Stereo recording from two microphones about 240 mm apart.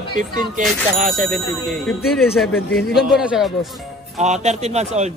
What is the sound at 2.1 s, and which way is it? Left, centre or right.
A man's voice, centre.